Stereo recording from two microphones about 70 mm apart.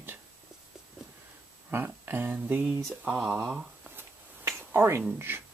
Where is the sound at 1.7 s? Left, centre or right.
Right.